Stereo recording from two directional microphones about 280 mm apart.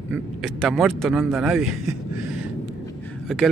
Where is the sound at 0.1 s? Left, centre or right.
Centre.